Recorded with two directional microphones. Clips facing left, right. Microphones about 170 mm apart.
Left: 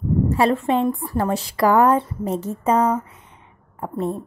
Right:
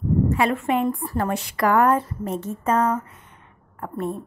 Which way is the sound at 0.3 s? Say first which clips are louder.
Left 3 dB; 30° left (ahead or behind).